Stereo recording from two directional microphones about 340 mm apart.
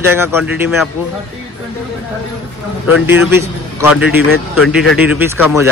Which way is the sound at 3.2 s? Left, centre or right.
Centre.